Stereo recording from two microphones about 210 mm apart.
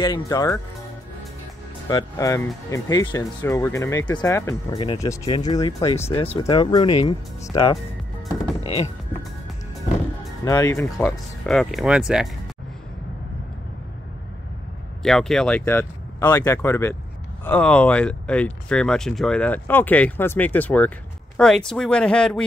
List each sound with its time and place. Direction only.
0.0 s speech: 20° left (ahead or behind)
1.9 s speech: 15° left (ahead or behind)
4.7 s speech: 25° left (ahead or behind)
6.1 s speech: 25° left (ahead or behind)
10.4 s speech: 15° left (ahead or behind); by 12.3 s 5° right (ahead or behind)
15.0 s speech: 5° left (ahead or behind)